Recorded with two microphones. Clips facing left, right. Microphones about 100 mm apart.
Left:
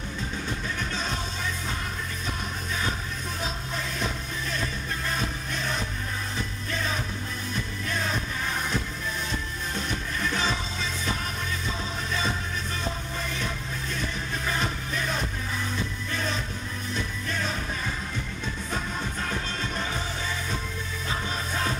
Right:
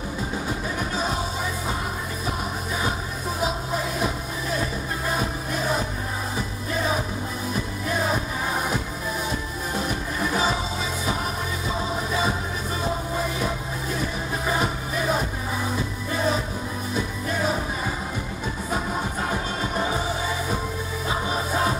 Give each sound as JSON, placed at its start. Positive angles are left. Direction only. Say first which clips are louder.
{"t": 0.5, "sound": "music", "louder": "right 4 dB", "side_deg": -10}
{"t": 3.3, "sound": "music", "louder": "right 8 dB", "side_deg": -10}
{"t": 9.8, "sound": "music", "louder": "right 5 dB", "side_deg": -10}
{"t": 19.2, "sound": "music", "louder": "right 5 dB", "side_deg": -15}